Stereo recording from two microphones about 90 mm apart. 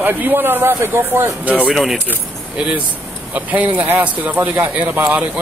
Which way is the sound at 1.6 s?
5° right (ahead or behind).